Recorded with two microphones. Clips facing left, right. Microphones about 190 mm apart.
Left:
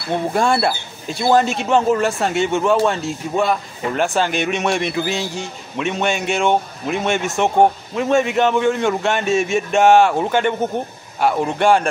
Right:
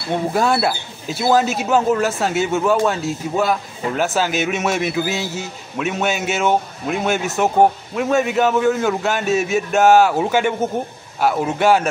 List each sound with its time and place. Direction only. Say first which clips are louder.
0.3 s a man's voice: left 1 dB; 5° right (ahead or behind)